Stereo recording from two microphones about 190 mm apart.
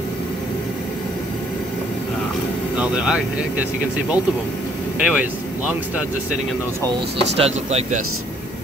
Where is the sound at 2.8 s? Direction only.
5° right (ahead or behind).